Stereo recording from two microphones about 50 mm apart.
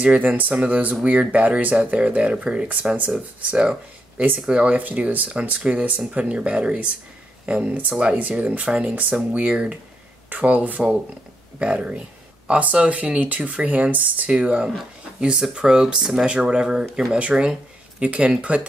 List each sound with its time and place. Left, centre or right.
0.0 s speech: right; by 16.3 s centre
16.3 s speech: centre